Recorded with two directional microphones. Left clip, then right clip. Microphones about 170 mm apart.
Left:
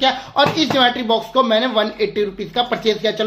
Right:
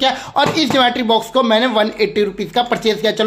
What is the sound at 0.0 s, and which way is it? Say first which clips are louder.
Speech: right 1 dB; 25° right (ahead or behind).